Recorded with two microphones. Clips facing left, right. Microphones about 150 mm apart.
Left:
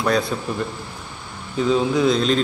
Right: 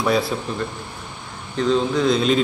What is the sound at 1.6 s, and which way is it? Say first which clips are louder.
Speech: left 1 dB; 10° left (ahead or behind).